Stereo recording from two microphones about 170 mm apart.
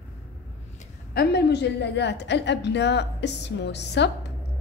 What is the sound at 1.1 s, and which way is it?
A woman's voice, 75° left (ahead or behind).